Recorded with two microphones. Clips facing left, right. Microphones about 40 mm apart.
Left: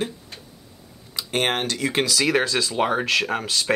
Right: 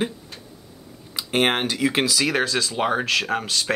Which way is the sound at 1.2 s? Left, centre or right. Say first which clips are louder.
Right 2 dB; centre.